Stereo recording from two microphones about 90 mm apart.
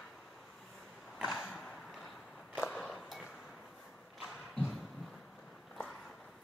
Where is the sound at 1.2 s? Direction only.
Centre (ahead or behind).